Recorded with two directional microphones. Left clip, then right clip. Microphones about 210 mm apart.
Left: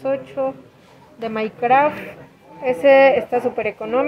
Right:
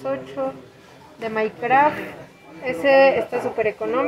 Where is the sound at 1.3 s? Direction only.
40° left (ahead or behind).